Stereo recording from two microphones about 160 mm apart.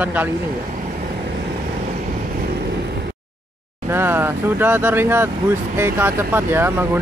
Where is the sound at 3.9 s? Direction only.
15° right (ahead or behind).